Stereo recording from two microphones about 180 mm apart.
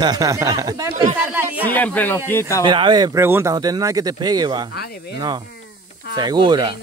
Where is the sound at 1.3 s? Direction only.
10° right (ahead or behind).